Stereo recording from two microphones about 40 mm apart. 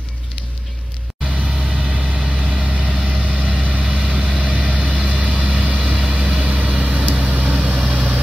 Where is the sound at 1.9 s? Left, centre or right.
Right.